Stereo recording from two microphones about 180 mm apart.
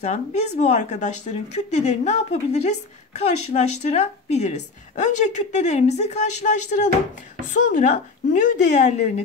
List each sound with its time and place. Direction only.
0.0 s speech: 40° left (ahead or behind)